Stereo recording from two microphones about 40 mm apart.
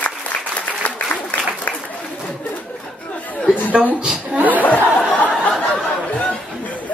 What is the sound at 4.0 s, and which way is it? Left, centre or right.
Chuckle, right.